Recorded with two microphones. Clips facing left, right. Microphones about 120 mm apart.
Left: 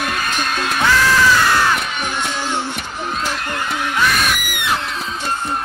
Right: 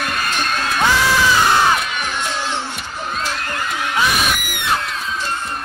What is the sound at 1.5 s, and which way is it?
Crowd, 20° right (ahead or behind).